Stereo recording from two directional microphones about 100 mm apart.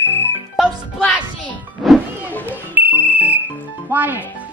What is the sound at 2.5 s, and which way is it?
Music, 15° right (ahead or behind).